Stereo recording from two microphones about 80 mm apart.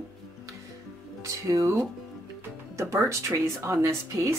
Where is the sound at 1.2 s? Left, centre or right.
Right.